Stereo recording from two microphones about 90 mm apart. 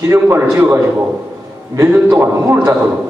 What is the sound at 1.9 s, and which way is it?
Speech, 25° right (ahead or behind).